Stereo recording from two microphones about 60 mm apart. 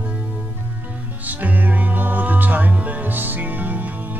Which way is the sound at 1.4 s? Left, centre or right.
Right.